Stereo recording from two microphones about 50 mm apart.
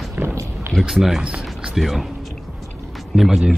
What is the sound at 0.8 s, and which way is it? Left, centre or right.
Speech, centre.